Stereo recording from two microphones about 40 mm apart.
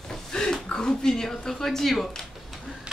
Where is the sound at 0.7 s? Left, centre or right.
Centre.